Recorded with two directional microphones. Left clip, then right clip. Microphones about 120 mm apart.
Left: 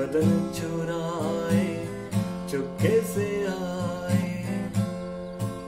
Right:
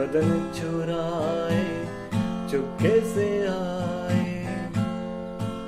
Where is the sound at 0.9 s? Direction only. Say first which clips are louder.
Right 3 dB; 30° left (ahead or behind).